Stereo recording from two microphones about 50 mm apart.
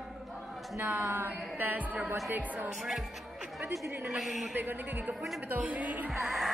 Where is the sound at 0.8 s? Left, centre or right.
Right.